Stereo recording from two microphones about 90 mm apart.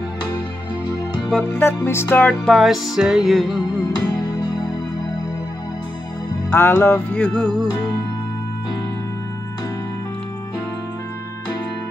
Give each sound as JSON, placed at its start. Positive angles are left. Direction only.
{"t": 1.5, "sound": "music", "side_deg": 25}
{"t": 2.5, "sound": "music", "side_deg": 0}
{"t": 4.1, "sound": "music", "side_deg": 50}
{"t": 6.5, "sound": "music", "side_deg": 25}